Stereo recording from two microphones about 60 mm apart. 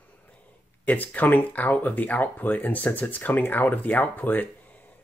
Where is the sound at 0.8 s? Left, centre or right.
Left.